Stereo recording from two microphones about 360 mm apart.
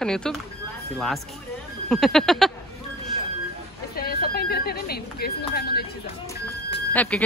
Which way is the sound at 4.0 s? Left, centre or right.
Left.